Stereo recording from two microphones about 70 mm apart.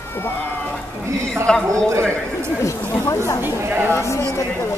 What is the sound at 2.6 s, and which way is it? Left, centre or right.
Speech, left.